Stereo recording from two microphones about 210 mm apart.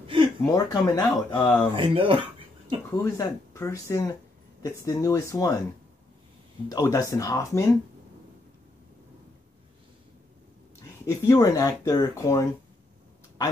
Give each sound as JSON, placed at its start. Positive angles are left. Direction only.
{"t": 0.0, "sound": "a sound", "side_deg": -25}
{"t": 0.5, "sound": "speech", "side_deg": 15}
{"t": 1.7, "sound": "speech", "side_deg": -25}
{"t": 2.9, "sound": "speech", "side_deg": 15}
{"t": 6.7, "sound": "speech", "side_deg": 15}
{"t": 10.8, "sound": "speech", "side_deg": 15}